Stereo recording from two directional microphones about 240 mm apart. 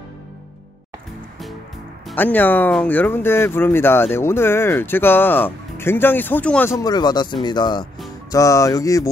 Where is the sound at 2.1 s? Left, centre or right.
Centre.